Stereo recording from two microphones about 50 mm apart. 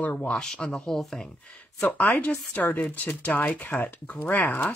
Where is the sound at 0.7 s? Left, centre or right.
Centre.